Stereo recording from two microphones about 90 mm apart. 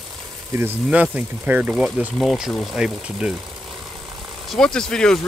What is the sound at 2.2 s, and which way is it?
Speech, centre (ahead or behind).